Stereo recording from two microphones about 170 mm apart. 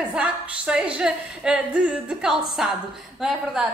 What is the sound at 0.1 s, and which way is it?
A woman's voice, 5° right (ahead or behind).